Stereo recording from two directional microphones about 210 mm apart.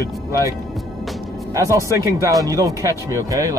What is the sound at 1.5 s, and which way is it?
Speech, 15° right (ahead or behind).